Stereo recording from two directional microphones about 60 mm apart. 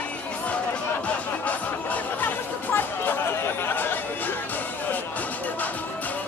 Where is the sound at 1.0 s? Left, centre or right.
Left.